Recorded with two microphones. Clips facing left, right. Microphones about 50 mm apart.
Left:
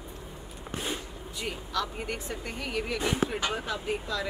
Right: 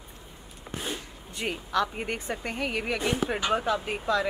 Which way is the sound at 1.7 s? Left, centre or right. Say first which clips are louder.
Right 5 dB; right.